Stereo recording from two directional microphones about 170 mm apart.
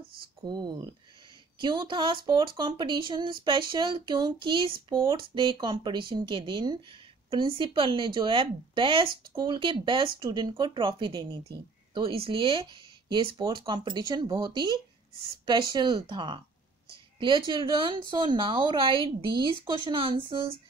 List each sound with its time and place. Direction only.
0.5 s speech: 25° right (ahead or behind)